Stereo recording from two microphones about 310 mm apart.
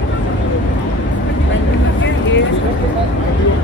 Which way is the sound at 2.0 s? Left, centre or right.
Left.